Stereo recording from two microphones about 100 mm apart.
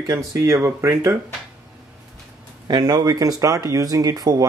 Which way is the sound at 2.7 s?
40° right (ahead or behind).